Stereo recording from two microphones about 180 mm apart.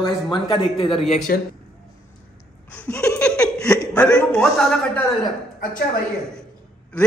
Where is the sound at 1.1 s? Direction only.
50° left (ahead or behind).